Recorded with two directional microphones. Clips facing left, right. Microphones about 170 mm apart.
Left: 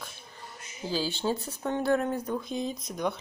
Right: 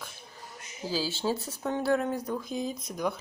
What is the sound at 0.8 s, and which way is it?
Speech, 5° right (ahead or behind).